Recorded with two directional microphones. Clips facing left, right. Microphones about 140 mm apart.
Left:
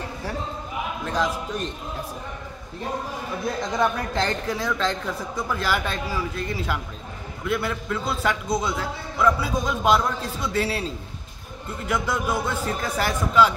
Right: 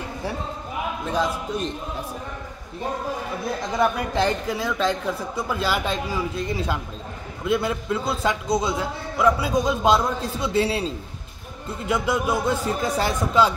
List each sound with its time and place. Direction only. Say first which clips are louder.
1.0 s speech: right 1 dB; 10° right (ahead or behind)
3.7 s speech: right 3 dB; 10° right (ahead or behind)
7.4 s a man's voice: right 3 dB; 20° right (ahead or behind)
8.7 s a man's voice: right 2 dB; 15° right (ahead or behind)
11.9 s a man's voice: right 2 dB; 15° right (ahead or behind)